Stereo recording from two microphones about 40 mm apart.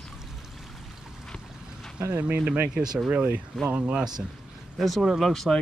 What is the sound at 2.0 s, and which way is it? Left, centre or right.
Speech, right.